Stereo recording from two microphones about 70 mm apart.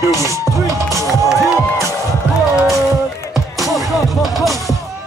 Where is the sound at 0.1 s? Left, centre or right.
Right.